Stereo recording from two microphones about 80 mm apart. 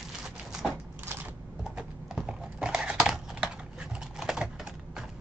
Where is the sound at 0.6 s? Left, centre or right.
Centre.